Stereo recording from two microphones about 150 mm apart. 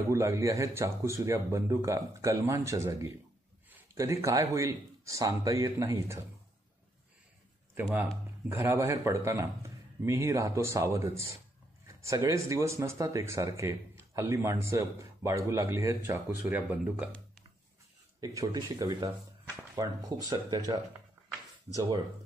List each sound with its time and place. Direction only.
0.1 s speech: 20° right (ahead or behind)
7.7 s speech: 10° right (ahead or behind)
18.2 s speech: 25° right (ahead or behind)